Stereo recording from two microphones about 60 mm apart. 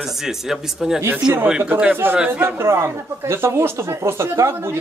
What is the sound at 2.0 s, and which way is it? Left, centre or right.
Speech, right.